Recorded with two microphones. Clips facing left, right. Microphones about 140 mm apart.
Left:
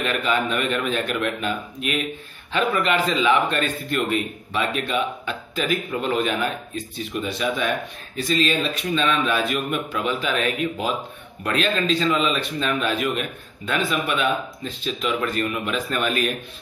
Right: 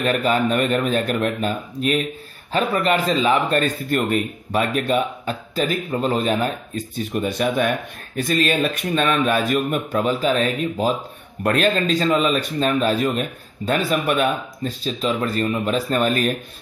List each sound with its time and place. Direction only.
0.0 s a man's voice: 40° right (ahead or behind)